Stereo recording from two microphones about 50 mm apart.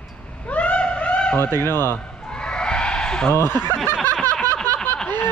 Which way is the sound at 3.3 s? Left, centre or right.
Left.